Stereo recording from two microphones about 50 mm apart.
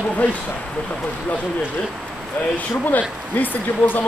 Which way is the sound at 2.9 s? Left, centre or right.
Left.